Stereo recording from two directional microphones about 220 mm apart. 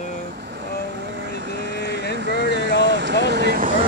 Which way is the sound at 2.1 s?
50° right (ahead or behind).